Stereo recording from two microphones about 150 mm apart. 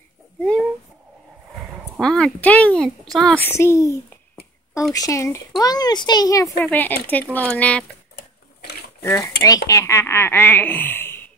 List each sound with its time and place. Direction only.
0.4 s a sound: 5° left (ahead or behind)
2.0 s a child's voice: 5° left (ahead or behind)
4.9 s speech: 20° left (ahead or behind)
6.6 s a child's voice: 10° left (ahead or behind)
9.0 s a child's voice: 20° left (ahead or behind)